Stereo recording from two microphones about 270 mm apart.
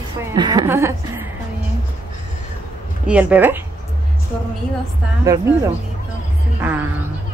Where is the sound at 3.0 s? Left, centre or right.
Centre.